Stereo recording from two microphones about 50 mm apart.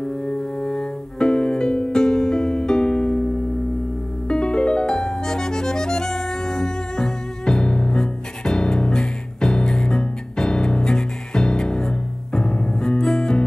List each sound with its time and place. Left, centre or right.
0.0 s music: centre